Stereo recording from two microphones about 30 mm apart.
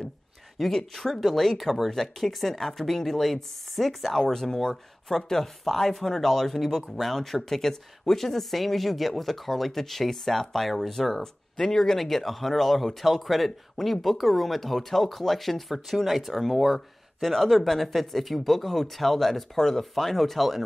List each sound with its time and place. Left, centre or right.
0.6 s speech: centre
4.3 s speech: centre